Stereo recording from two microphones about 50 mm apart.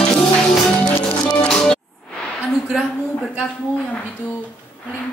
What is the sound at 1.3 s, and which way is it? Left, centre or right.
Music, centre.